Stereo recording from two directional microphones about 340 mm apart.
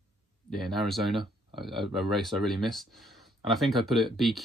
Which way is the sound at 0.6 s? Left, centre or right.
Centre.